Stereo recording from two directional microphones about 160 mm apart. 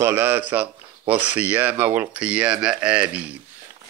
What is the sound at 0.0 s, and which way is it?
Speech, 15° right (ahead or behind).